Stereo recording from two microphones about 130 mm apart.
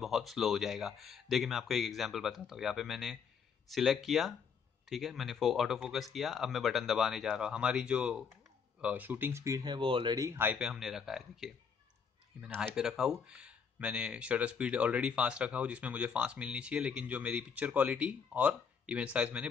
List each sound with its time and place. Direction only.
0.0 s speech: centre (ahead or behind); by 9.8 s 25° right (ahead or behind)
9.8 s speech: 40° right (ahead or behind)
10.1 s speech: 20° right (ahead or behind)
10.7 s speech: 5° right (ahead or behind)
12.7 s speech: 5° right (ahead or behind)